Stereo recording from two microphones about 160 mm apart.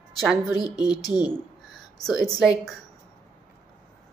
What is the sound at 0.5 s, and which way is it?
Speech, 25° left (ahead or behind).